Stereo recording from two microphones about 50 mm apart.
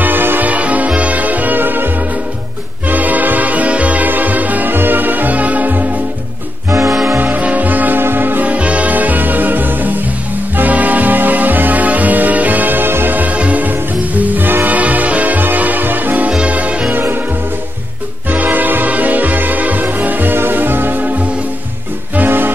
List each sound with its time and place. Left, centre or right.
0.0 s music: right
0.5 s music: right
2.9 s music: right
6.9 s music: centre
7.2 s music: right
8.0 s music: right
16.3 s music: right
16.9 s music: right
18.3 s music: right
22.1 s music: right